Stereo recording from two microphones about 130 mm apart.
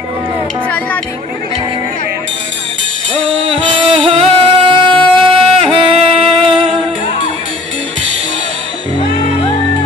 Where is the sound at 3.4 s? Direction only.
45° right (ahead or behind).